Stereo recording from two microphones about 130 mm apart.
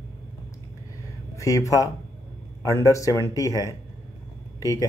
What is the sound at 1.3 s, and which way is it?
Speech, 25° left (ahead or behind).